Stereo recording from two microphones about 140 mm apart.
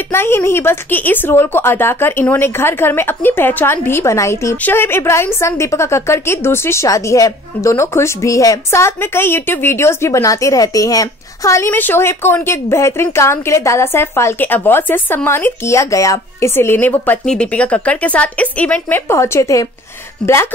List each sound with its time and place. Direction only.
0.1 s a woman's voice: 15° left (ahead or behind)